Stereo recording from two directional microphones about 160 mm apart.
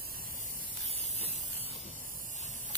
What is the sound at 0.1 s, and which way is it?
Spray, 60° right (ahead or behind).